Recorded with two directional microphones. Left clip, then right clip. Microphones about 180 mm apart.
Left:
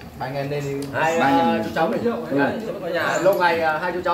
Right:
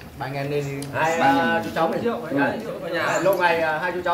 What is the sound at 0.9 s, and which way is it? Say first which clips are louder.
Speech: left 1 dB; 20° left (ahead or behind).